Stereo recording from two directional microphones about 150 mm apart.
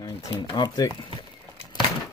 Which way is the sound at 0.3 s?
25° left (ahead or behind).